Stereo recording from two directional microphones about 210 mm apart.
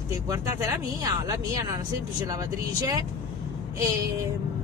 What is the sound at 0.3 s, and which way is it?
Speech, 15° right (ahead or behind).